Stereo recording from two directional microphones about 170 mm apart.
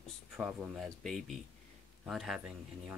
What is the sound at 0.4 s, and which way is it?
Speech, 5° right (ahead or behind).